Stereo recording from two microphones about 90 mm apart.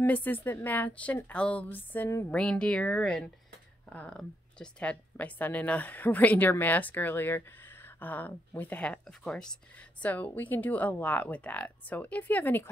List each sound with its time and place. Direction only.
0.0 s a woman's voice: 20° left (ahead or behind)
10.0 s speech: 20° left (ahead or behind)